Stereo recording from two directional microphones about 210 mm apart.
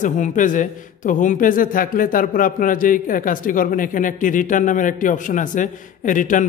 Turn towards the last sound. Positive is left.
turn(degrees=40)  # may be behind; listen again after turning